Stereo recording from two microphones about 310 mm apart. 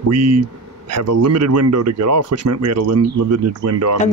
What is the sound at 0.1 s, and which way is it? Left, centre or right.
Speech, right.